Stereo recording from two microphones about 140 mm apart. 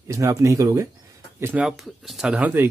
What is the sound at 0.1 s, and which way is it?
Speech, 25° right (ahead or behind).